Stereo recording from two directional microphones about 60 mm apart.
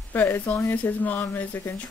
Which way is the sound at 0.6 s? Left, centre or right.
Left.